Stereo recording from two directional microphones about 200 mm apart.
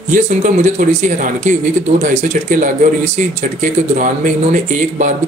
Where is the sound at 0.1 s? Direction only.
40° right (ahead or behind).